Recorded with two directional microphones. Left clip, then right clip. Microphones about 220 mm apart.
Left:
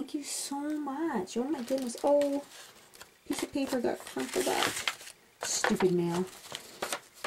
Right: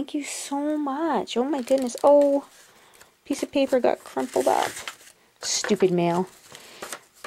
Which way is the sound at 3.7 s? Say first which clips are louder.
Right 10 dB; centre (ahead or behind).